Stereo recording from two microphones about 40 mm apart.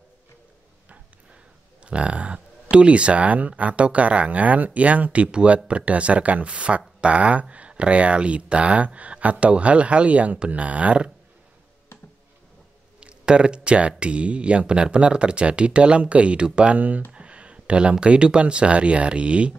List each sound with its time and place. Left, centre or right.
1.9 s speech: right
13.0 s speech: right
16.7 s speech: right
17.1 s a sound: right
18.0 s speech: right